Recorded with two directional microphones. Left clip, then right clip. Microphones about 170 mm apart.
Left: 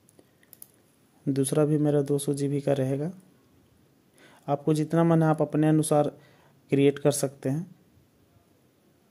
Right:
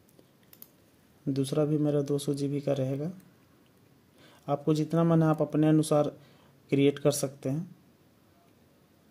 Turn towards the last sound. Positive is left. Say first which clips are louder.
# left 3 dB
turn(degrees=15)  # may be behind; listen again after turning